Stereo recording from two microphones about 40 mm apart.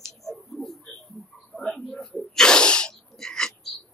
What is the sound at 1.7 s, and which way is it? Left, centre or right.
Sneeze, centre.